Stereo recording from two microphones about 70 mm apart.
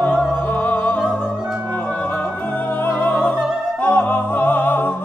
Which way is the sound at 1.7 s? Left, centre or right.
Left.